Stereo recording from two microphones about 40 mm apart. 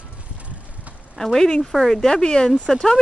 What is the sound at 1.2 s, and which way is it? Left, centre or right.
Speech, centre.